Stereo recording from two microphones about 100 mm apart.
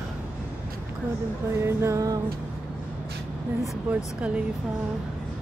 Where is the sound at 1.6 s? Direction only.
30° right (ahead or behind).